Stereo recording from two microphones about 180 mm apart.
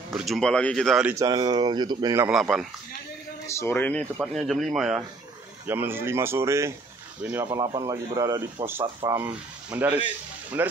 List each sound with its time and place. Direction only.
0.1 s speech: centre (ahead or behind)
1.1 s a man's voice: 20° right (ahead or behind)
2.2 s speech: centre (ahead or behind)
3.4 s a man's voice: 15° left (ahead or behind); by 10.7 s 10° right (ahead or behind)